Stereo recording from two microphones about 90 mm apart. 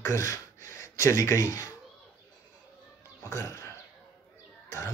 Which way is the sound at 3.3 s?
35° left (ahead or behind).